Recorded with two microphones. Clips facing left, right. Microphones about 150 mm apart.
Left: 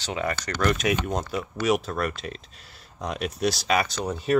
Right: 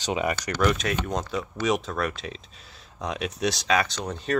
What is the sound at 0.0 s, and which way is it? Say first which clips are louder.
Speech: right 2 dB; 15° right (ahead or behind).